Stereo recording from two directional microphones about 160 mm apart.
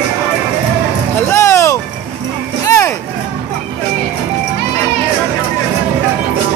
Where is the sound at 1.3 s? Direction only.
15° left (ahead or behind).